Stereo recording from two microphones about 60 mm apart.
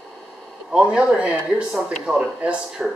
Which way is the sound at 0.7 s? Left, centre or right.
Centre.